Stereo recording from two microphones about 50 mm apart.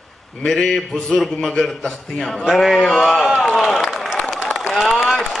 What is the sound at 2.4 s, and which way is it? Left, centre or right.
Speech, centre.